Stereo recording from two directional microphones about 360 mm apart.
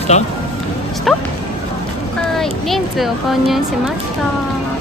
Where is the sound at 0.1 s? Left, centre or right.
Centre.